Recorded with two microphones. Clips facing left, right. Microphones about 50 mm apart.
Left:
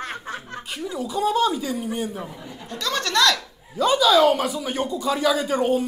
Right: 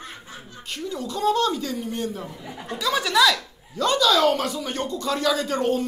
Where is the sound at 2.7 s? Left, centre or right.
Centre.